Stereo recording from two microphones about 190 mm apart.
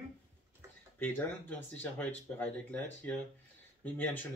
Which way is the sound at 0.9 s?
10° left (ahead or behind).